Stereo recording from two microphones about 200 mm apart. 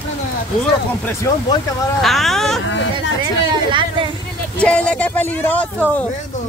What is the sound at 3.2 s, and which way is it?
Speech, 25° right (ahead or behind).